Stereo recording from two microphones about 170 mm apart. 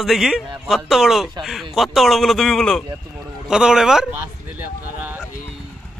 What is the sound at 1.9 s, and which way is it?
A man's voice, centre (ahead or behind).